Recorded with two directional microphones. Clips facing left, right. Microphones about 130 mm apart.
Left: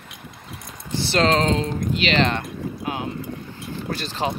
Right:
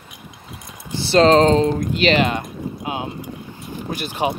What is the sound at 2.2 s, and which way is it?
Speech, 10° right (ahead or behind).